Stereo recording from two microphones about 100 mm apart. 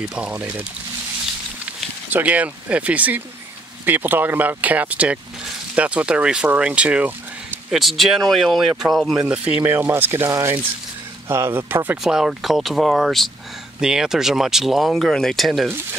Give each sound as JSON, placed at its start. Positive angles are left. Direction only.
{"t": 0.0, "sound": "speech", "side_deg": -10}
{"t": 2.1, "sound": "speech", "side_deg": -15}
{"t": 9.2, "sound": "speech", "side_deg": -10}
{"t": 12.0, "sound": "speech", "side_deg": -5}